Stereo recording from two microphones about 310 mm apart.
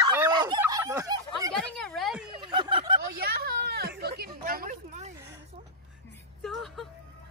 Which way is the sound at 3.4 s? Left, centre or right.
Right.